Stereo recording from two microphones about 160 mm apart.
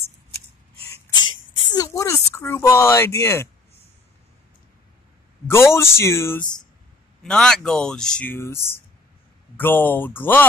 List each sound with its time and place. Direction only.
1.7 s speech: 20° left (ahead or behind)
5.5 s speech: 15° left (ahead or behind)
7.2 s speech: 5° left (ahead or behind)